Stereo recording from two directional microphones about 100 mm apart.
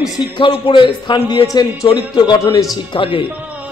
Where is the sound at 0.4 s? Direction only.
50° left (ahead or behind).